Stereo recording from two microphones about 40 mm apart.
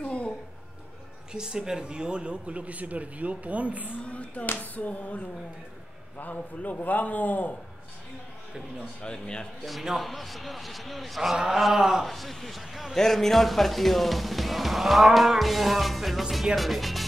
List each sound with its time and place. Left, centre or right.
0.0 s a sound: left
1.3 s speech: centre; by 3.9 s right
4.0 s speech: left
4.5 s a sound: left
6.1 s a man's voice: left
9.0 s a man's voice: left
9.7 s speech: centre
12.9 s speech: centre